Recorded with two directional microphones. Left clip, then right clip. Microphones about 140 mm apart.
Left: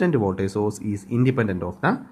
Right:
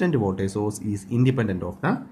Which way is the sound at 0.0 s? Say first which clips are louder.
Left 2 dB; 40° left (ahead or behind).